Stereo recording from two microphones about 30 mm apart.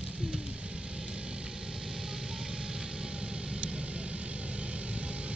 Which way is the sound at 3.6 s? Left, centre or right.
Right.